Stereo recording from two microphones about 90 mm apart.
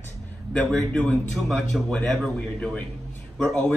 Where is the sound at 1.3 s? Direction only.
Centre (ahead or behind).